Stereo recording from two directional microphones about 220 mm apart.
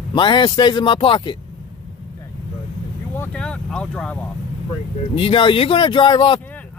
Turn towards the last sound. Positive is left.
turn(degrees=20)  # may be behind; listen again after turning